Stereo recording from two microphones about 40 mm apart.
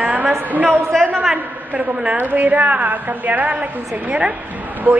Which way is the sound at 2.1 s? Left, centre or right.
Right.